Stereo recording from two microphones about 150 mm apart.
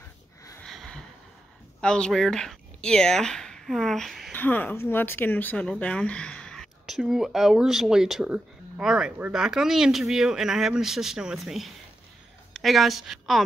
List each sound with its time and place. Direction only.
0.7 s a sound: 5° left (ahead or behind)
1.8 s speech: 5° left (ahead or behind)
4.4 s a woman's voice: 10° left (ahead or behind)